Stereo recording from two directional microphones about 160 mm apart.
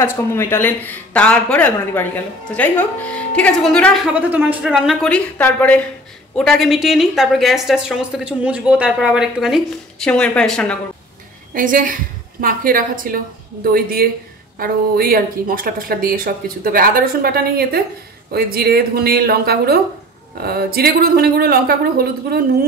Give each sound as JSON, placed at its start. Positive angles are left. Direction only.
{"t": 0.0, "sound": "a woman's voice", "side_deg": 15}
{"t": 4.0, "sound": "speech", "side_deg": -10}
{"t": 4.6, "sound": "a woman's voice", "side_deg": 0}
{"t": 11.5, "sound": "a woman's voice", "side_deg": -60}